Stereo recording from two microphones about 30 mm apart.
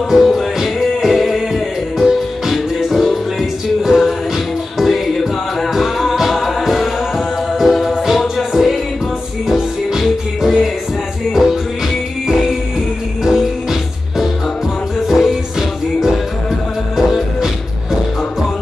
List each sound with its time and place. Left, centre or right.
0.1 s music: centre
1.1 s music: centre
3.8 s music: centre
4.7 s music: centre
13.2 s music: centre
16.9 s music: centre